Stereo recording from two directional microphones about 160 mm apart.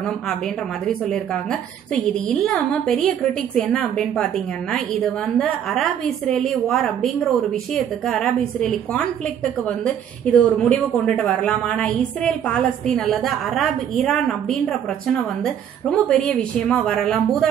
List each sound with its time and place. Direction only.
0.8 s a woman's voice: 5° left (ahead or behind)